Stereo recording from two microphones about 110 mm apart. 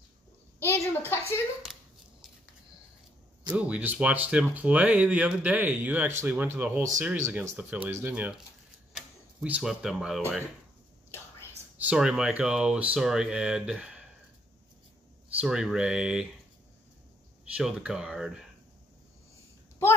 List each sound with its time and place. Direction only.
0.6 s a woman's voice: 20° left (ahead or behind)
3.5 s speech: 10° right (ahead or behind)
11.8 s speech: 10° right (ahead or behind)
15.4 s speech: 5° right (ahead or behind)
17.6 s speech: 10° right (ahead or behind)